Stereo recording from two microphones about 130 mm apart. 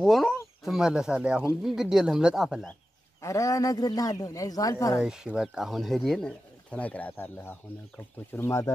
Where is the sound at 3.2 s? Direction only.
25° left (ahead or behind).